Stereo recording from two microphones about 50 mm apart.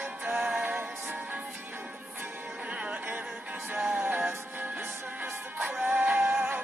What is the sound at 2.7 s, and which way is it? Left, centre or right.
Music, right.